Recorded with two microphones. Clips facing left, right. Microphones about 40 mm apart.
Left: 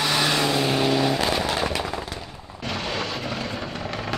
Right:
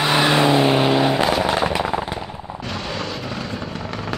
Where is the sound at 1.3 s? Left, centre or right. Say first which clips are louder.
Right 5 dB; right.